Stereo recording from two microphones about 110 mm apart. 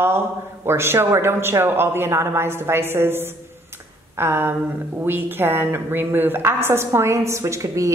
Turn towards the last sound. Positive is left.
turn(degrees=-30)  # may be behind; listen again after turning